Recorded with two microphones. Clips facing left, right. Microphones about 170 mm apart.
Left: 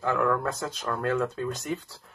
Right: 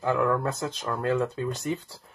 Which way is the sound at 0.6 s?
15° right (ahead or behind).